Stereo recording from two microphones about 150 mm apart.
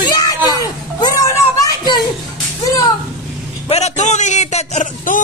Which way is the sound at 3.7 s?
50° left (ahead or behind).